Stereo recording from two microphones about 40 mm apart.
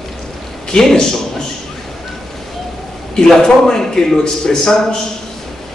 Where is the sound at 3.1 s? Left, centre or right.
Centre.